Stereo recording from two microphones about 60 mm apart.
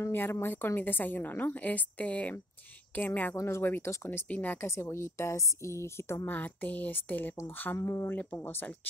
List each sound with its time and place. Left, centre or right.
0.1 s a woman's voice: left
3.3 s a woman's voice: left
4.3 s speech: left
4.6 s a woman's voice: left
6.2 s a woman's voice: left
7.7 s a woman's voice: left